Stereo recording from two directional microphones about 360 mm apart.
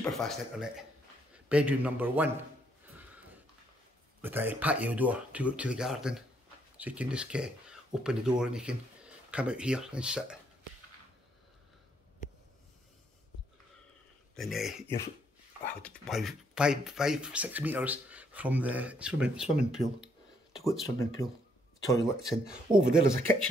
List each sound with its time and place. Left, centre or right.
0.0 s a man's voice: centre
4.2 s speech: centre
12.2 s a sound: left
14.3 s speech: centre
22.3 s speech: centre